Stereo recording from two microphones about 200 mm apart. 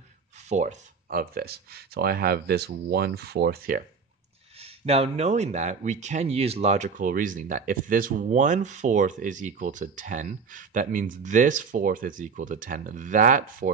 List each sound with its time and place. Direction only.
0.5 s speech: 35° right (ahead or behind)
4.6 s speech: 30° right (ahead or behind)